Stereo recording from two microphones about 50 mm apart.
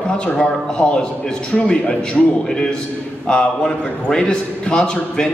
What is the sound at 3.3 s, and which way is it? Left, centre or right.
A man's voice, centre.